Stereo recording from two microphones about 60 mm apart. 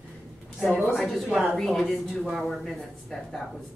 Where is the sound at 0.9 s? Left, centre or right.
Centre.